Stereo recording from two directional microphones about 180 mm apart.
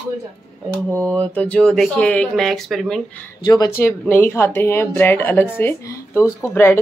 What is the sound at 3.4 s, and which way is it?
Speech, 20° left (ahead or behind).